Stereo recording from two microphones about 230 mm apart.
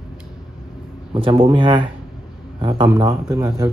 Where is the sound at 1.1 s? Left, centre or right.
Right.